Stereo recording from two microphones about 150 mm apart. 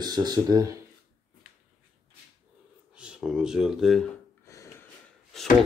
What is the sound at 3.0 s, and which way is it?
Speech, 5° right (ahead or behind).